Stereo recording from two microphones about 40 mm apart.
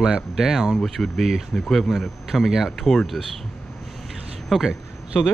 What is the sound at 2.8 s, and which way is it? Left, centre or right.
Speech, centre.